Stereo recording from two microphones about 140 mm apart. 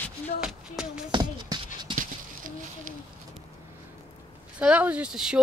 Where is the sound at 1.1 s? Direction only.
35° right (ahead or behind).